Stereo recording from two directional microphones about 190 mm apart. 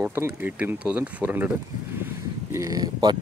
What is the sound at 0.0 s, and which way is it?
Speech, 10° right (ahead or behind).